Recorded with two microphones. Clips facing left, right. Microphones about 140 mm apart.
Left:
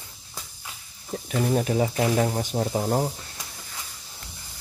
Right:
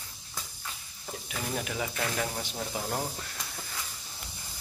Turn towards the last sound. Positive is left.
turn(degrees=35)  # may be behind; listen again after turning